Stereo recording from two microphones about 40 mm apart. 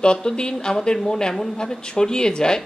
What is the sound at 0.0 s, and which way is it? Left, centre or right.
Speech, left.